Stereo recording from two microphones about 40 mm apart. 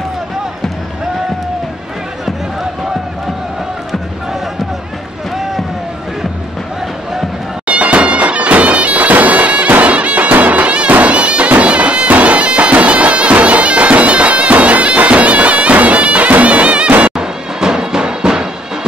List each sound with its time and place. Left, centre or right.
7.6 s bagpipes: right
17.1 s music: centre